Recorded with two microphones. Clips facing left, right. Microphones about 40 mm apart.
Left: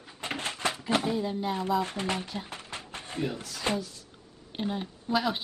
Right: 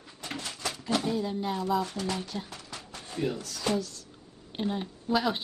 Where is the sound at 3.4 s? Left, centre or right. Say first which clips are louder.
Even; left.